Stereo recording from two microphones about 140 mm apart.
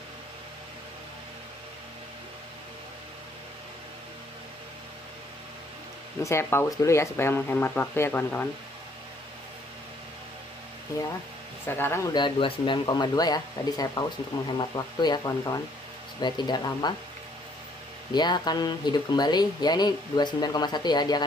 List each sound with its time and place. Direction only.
6.2 s speech: 20° left (ahead or behind)
11.6 s speech: 15° left (ahead or behind)
18.1 s speech: 30° left (ahead or behind)